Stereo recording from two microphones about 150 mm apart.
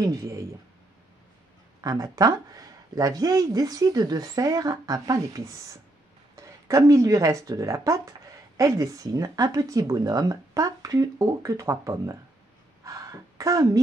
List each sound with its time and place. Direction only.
0.0 s speech: 20° right (ahead or behind)
1.8 s speech: 25° right (ahead or behind)
12.8 s a sound: 20° right (ahead or behind)